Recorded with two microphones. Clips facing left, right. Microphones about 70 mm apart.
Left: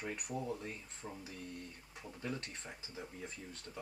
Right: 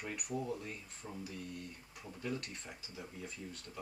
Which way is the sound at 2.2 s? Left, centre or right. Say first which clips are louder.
Right 2 dB; left.